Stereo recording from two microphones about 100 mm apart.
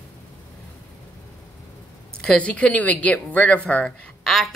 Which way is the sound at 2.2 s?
10° left (ahead or behind).